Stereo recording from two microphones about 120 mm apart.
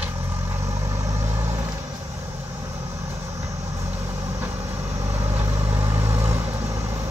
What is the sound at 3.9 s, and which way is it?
Vehicle, 20° right (ahead or behind).